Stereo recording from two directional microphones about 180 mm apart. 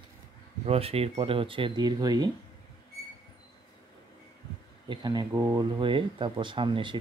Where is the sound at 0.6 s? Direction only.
35° right (ahead or behind).